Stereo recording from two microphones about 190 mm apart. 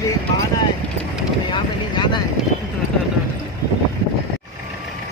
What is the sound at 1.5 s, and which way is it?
Boat, 25° left (ahead or behind).